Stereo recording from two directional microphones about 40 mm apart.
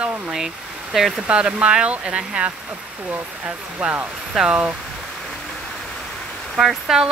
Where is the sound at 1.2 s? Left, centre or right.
Right.